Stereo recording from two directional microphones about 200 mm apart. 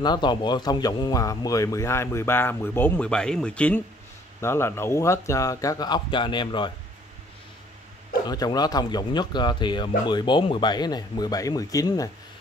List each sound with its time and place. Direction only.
0.0 s speech: 20° left (ahead or behind)
8.3 s speech: 20° left (ahead or behind)